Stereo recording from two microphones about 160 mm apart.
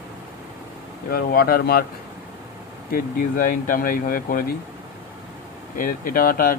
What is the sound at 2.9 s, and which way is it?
Speech, 60° left (ahead or behind).